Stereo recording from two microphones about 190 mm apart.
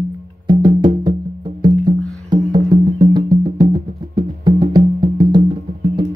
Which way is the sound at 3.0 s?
25° right (ahead or behind).